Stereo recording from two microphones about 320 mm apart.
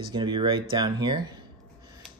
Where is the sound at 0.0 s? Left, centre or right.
Centre.